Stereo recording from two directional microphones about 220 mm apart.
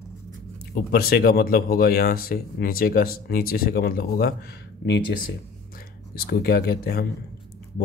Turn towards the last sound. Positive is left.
turn(degrees=45)  # may be behind; listen again after turning